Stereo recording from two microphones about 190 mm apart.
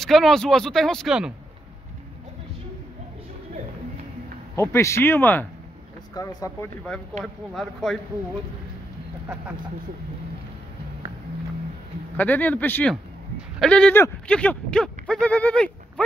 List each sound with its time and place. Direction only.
0.0 s speech: centre (ahead or behind)
4.6 s speech: 15° left (ahead or behind)
7.5 s speech: centre (ahead or behind)
12.2 s speech: 10° left (ahead or behind)